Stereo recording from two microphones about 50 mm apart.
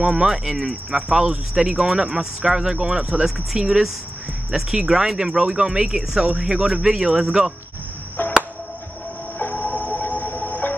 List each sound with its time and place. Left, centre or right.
0.0 s speech: centre
0.3 s speech: centre
8.2 s chop: left
9.4 s music: left